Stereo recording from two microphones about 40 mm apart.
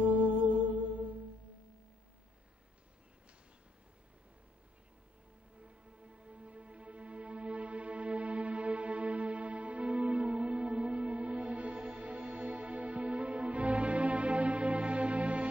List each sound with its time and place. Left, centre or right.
0.0 s music: right
5.6 s music: right